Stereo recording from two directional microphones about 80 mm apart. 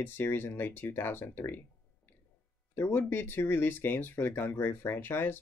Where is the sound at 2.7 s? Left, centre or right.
Left.